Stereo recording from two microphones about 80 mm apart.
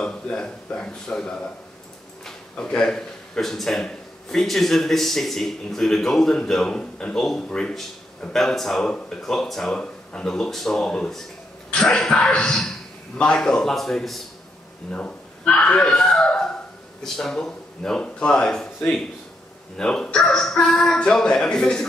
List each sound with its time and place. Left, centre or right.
0.0 s a man's voice: centre